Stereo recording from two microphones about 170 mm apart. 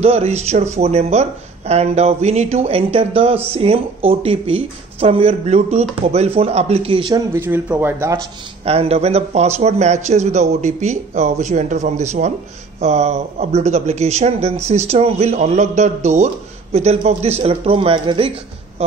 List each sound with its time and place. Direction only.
0.0 s speech: 40° right (ahead or behind); by 8.2 s 15° right (ahead or behind)
8.6 s speech: 35° right (ahead or behind)
18.8 s a sound: 35° right (ahead or behind)